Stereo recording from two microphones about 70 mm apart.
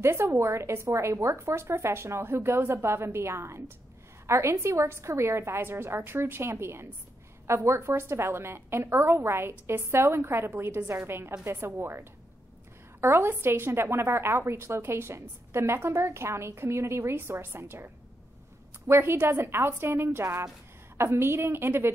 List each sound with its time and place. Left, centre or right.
0.0 s a woman's voice: right